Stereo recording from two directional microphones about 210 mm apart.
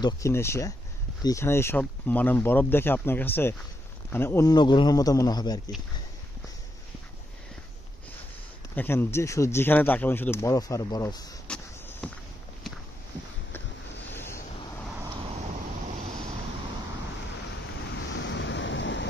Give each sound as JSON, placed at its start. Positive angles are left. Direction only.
{"t": 0.0, "sound": "speech", "side_deg": 15}
{"t": 8.7, "sound": "speech", "side_deg": 10}
{"t": 11.4, "sound": "vehicle", "side_deg": 5}
{"t": 14.1, "sound": "vehicle", "side_deg": 10}
{"t": 18.1, "sound": "waves", "side_deg": 60}